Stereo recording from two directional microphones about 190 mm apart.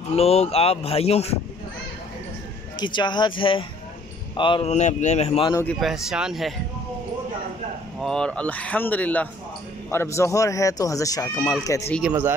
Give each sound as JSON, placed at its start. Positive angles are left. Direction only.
{"t": 0.1, "sound": "speech", "side_deg": 35}
{"t": 2.8, "sound": "speech", "side_deg": 25}
{"t": 5.5, "sound": "speech", "side_deg": 15}
{"t": 5.8, "sound": "speech", "side_deg": 0}
{"t": 8.0, "sound": "speech", "side_deg": 5}
{"t": 12.0, "sound": "speech", "side_deg": -10}